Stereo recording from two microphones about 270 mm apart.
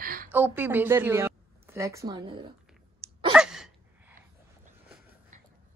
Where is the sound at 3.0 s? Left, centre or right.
Centre.